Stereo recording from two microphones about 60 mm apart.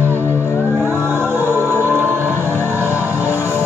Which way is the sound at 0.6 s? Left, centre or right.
Right.